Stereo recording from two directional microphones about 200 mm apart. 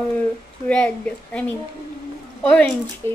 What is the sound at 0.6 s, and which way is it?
A woman's voice, 5° left (ahead or behind).